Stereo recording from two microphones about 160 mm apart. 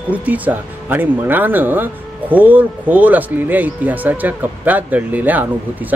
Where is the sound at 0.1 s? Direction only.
10° right (ahead or behind).